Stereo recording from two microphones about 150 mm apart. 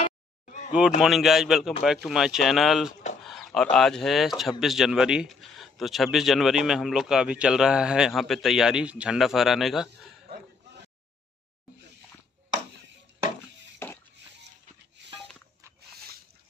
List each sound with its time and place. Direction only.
0.5 s a sound: 55° left (ahead or behind)
1.0 s speech: centre (ahead or behind)
13.8 s music: 15° left (ahead or behind)